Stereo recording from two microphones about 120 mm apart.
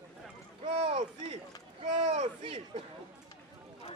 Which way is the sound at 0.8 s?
45° right (ahead or behind).